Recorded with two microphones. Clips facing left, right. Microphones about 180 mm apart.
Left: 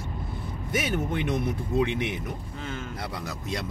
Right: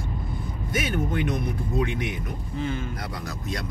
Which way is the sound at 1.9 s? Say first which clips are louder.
Left 1 dB; 45° right (ahead or behind).